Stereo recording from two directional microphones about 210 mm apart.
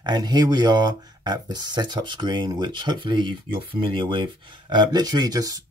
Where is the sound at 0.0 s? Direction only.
20° right (ahead or behind).